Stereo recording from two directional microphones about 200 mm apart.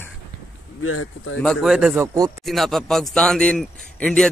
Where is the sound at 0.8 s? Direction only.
90° left.